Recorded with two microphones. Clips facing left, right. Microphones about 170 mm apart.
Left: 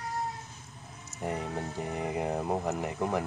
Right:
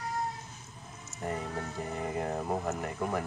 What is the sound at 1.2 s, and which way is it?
Speech, 15° left (ahead or behind).